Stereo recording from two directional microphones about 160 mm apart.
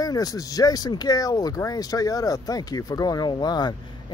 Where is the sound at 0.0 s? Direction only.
25° left (ahead or behind).